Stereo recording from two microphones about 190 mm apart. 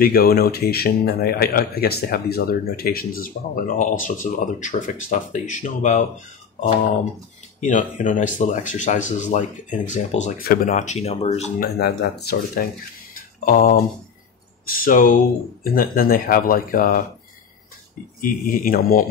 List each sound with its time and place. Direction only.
0.0 s speech: 55° left (ahead or behind); by 11.5 s 35° left (ahead or behind)
11.6 s speech: 55° left (ahead or behind)
13.1 s a sound: 50° left (ahead or behind)
14.7 s speech: 50° left (ahead or behind)
18.2 s speech: 50° left (ahead or behind)